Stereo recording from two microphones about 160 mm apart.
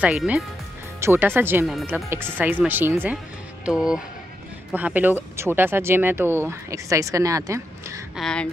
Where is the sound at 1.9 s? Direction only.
15° right (ahead or behind).